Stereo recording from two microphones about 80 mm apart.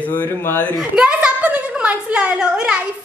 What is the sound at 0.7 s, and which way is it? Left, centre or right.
A woman's voice, centre.